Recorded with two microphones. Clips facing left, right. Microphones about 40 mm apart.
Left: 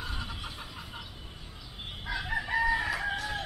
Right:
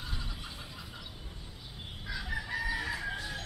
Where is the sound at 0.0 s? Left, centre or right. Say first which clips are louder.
Left 4 dB; left.